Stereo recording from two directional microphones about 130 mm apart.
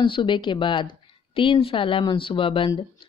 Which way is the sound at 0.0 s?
40° left (ahead or behind).